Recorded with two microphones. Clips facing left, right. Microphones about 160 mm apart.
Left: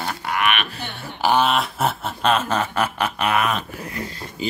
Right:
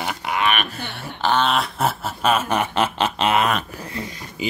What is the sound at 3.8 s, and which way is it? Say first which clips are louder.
Speech: even; 25° right (ahead or behind).